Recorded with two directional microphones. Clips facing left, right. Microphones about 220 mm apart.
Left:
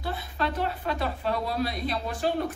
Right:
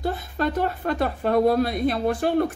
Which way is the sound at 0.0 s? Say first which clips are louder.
Right 6 dB; 45° right (ahead or behind).